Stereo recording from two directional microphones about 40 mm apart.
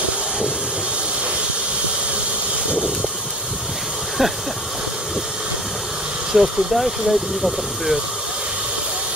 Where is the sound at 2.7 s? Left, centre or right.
Right.